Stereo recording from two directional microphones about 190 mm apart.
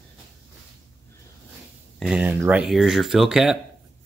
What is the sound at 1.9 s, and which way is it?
Speech, 5° right (ahead or behind).